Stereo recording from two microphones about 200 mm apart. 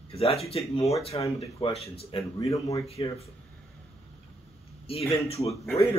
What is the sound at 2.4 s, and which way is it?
Speech, 15° left (ahead or behind).